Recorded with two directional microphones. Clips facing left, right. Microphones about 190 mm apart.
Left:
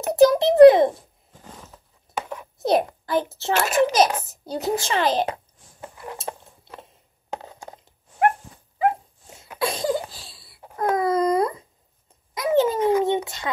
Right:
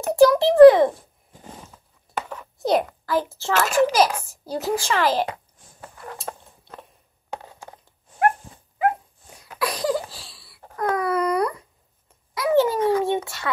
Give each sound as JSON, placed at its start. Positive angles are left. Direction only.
{"t": 0.0, "sound": "a child's voice", "side_deg": 20}
{"t": 2.1, "sound": "a sound", "side_deg": 10}
{"t": 2.8, "sound": "a woman's voice", "side_deg": 25}
{"t": 7.4, "sound": "cat", "side_deg": 25}
{"t": 9.4, "sound": "baby cry", "side_deg": 25}
{"t": 12.4, "sound": "a child's voice", "side_deg": 20}